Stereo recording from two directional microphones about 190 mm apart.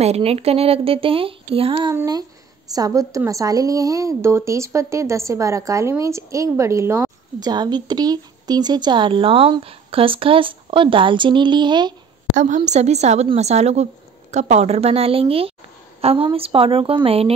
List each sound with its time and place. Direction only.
0.0 s a woman's voice: 35° right (ahead or behind)
12.4 s a woman's voice: 40° right (ahead or behind)